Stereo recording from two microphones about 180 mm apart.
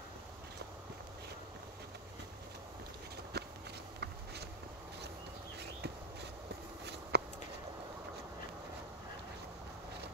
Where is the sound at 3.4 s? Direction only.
65° right (ahead or behind).